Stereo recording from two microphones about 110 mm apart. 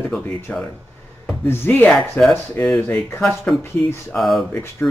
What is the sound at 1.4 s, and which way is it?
Speech, 20° left (ahead or behind).